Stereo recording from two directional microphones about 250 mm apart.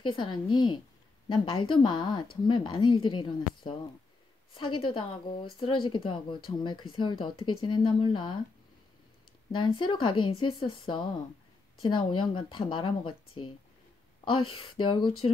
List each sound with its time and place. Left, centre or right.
0.0 s a woman's voice: centre
9.5 s speech: centre